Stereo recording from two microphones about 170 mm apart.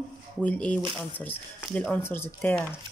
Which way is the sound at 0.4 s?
5° left (ahead or behind).